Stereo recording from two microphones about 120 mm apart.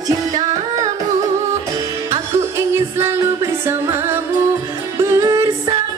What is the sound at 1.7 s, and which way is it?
Music, 25° right (ahead or behind).